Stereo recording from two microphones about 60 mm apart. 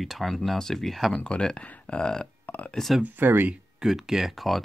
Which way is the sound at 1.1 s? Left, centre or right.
Centre.